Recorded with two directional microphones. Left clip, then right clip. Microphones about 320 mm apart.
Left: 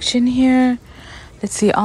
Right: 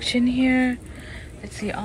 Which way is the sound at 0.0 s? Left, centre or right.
Centre.